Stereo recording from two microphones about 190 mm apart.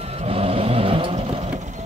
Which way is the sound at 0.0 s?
30° right (ahead or behind).